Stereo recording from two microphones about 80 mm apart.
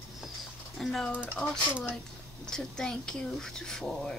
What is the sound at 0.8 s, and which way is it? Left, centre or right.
Speech, centre.